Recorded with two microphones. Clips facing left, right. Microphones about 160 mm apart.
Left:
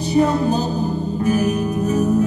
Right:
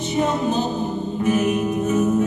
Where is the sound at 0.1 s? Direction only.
20° right (ahead or behind).